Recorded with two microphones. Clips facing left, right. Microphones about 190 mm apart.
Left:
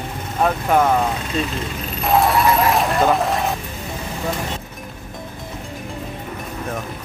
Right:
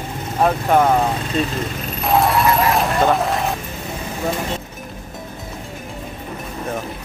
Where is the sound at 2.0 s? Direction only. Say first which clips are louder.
Even; centre (ahead or behind).